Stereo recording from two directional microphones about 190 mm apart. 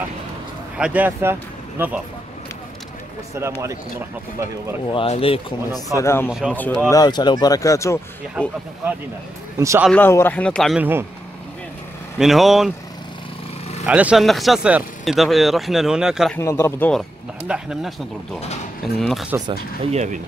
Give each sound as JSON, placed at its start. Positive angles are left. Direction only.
{"t": 0.7, "sound": "speech", "side_deg": -5}
{"t": 4.9, "sound": "speech", "side_deg": 30}
{"t": 5.9, "sound": "a man's voice", "side_deg": 15}
{"t": 6.9, "sound": "speech", "side_deg": 20}
{"t": 8.4, "sound": "speech", "side_deg": -10}
{"t": 9.6, "sound": "speech", "side_deg": -15}
{"t": 9.8, "sound": "a man's voice", "side_deg": 10}
{"t": 10.8, "sound": "speech", "side_deg": -10}
{"t": 12.2, "sound": "speech", "side_deg": 0}
{"t": 13.8, "sound": "speech", "side_deg": -5}
{"t": 16.3, "sound": "a man's voice", "side_deg": 15}
{"t": 17.5, "sound": "speech", "side_deg": 0}
{"t": 19.9, "sound": "speech", "side_deg": -35}